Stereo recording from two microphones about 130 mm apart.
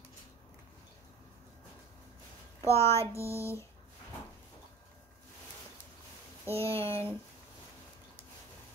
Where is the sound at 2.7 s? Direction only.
50° right (ahead or behind).